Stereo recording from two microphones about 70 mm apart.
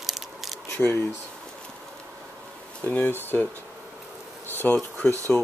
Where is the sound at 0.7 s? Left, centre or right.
Left.